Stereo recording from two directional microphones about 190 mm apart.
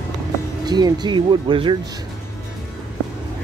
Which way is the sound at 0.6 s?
20° right (ahead or behind).